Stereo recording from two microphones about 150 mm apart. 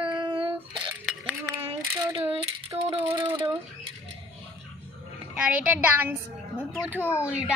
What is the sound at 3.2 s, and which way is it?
Speech, 30° right (ahead or behind).